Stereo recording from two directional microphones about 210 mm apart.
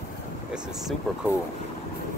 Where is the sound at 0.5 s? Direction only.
5° right (ahead or behind).